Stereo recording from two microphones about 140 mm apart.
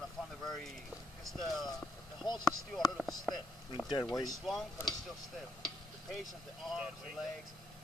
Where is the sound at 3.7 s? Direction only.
30° left (ahead or behind).